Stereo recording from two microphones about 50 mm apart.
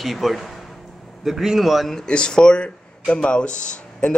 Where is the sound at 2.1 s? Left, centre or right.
Centre.